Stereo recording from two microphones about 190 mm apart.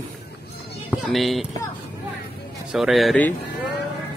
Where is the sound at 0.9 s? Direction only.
Centre (ahead or behind).